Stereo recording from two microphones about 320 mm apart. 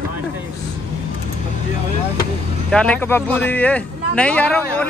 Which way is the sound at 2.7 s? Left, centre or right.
Centre.